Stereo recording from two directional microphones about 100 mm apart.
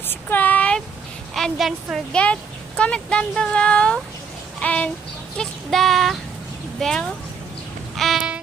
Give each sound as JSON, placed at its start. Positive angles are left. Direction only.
{"t": 0.1, "sound": "a sound", "side_deg": 20}
{"t": 1.3, "sound": "a woman's voice", "side_deg": 0}
{"t": 2.1, "sound": "speech", "side_deg": 10}
{"t": 7.9, "sound": "music", "side_deg": 0}